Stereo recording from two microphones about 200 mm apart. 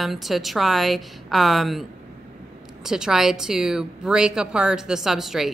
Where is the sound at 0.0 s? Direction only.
Centre (ahead or behind).